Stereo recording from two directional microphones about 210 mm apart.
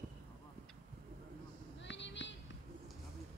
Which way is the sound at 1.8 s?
60° left (ahead or behind).